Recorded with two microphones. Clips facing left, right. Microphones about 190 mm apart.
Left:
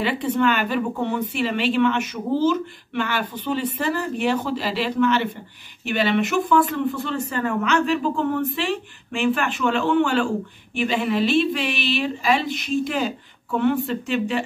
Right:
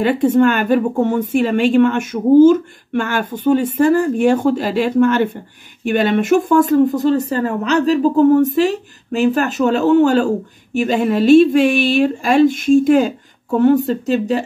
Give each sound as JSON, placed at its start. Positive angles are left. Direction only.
{"t": 0.0, "sound": "speech", "side_deg": -50}